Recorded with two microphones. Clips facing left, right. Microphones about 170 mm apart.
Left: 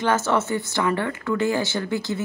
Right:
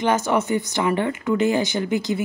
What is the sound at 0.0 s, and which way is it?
A woman's voice, 15° right (ahead or behind).